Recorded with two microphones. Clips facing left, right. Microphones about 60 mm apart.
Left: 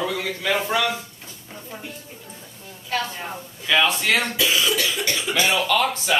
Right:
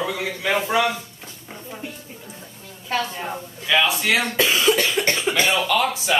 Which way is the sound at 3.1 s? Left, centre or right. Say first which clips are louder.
Right 3 dB; centre.